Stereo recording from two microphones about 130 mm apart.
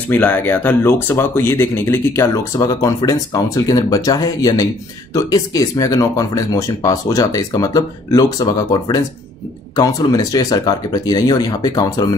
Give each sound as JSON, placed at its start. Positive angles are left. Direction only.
{"t": 0.1, "sound": "speech", "side_deg": 15}